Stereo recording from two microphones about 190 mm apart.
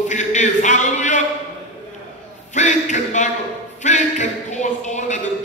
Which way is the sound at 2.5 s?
40° left (ahead or behind).